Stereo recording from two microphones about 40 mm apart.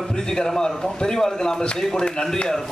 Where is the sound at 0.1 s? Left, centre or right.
Centre.